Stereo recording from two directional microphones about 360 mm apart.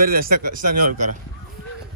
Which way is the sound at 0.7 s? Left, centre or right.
Right.